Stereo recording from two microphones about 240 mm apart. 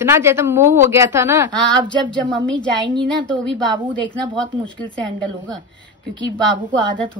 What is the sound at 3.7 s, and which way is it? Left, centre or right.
Speech, centre.